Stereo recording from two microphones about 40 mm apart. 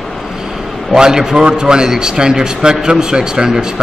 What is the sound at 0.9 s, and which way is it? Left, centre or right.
A man's voice, centre.